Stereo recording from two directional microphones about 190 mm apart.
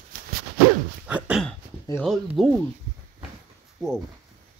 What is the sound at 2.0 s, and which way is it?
Speech, centre (ahead or behind).